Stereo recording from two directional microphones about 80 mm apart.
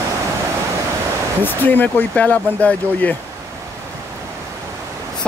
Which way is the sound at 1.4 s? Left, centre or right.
Left.